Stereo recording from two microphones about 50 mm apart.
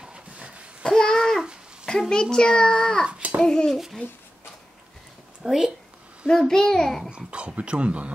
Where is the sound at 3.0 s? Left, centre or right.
Right.